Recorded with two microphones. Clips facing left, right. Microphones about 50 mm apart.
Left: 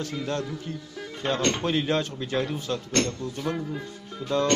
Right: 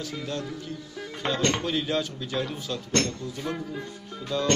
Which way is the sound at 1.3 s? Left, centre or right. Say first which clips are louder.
Left 1 dB; left.